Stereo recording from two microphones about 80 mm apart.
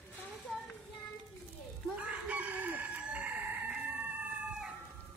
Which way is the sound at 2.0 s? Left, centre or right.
Centre.